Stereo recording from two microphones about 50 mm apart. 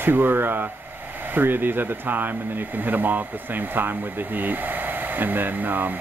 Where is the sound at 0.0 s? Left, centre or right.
Right.